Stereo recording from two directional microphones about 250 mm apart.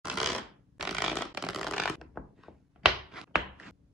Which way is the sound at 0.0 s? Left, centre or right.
Centre.